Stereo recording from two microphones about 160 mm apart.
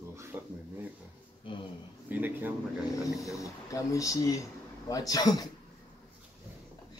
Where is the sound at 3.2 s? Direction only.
20° left (ahead or behind).